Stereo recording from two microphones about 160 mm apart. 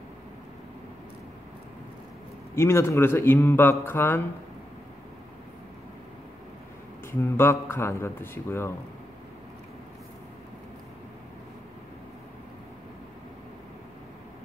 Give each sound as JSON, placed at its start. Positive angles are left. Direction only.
{"t": 2.5, "sound": "speech", "side_deg": 15}
{"t": 7.1, "sound": "speech", "side_deg": 15}